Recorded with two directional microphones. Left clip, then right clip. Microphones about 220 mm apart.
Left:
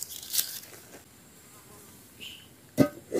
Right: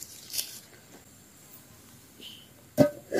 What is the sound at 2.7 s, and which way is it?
Music, 5° right (ahead or behind).